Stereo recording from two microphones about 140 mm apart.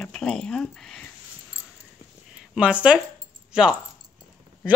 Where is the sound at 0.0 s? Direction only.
5° left (ahead or behind).